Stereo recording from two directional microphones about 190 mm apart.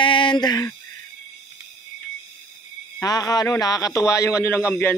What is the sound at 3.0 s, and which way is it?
A man's voice, 20° left (ahead or behind).